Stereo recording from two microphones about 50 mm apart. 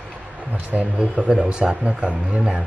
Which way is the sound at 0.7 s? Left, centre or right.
Right.